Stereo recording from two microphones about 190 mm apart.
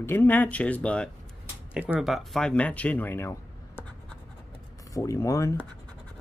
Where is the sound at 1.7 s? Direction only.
5° right (ahead or behind); by 5.7 s 15° left (ahead or behind).